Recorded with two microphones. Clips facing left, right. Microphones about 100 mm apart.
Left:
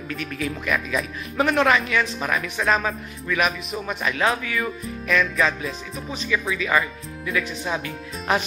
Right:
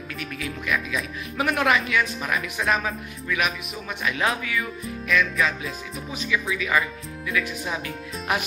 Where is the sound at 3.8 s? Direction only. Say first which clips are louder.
Left 2 dB; 35° left (ahead or behind).